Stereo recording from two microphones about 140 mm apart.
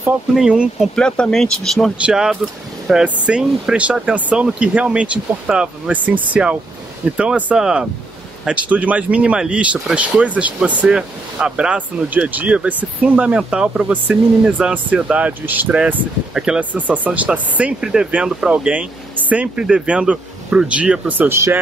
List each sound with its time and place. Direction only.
0.3 s speech: 5° right (ahead or behind)
0.9 s speech: 5° left (ahead or behind); by 21.5 s 15° right (ahead or behind)